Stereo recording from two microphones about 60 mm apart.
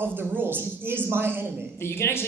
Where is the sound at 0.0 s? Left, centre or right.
Right.